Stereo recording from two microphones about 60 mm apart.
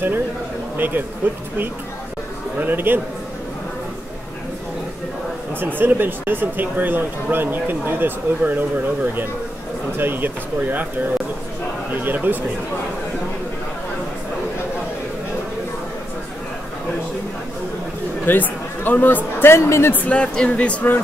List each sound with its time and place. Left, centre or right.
0.7 s speech: right
2.6 s speech: right
5.6 s speech: right
18.2 s speech: left
19.9 s speech: left